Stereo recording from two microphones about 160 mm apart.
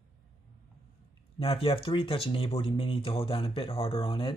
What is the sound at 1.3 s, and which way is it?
Speech, 35° left (ahead or behind).